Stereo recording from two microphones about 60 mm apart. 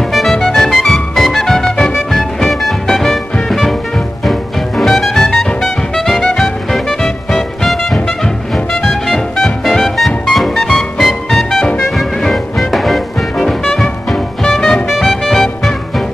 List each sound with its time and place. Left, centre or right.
0.1 s music: centre